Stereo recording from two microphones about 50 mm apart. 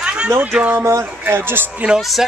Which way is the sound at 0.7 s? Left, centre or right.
Right.